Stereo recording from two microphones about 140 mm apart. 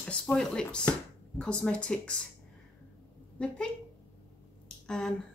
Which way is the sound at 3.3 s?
5° left (ahead or behind).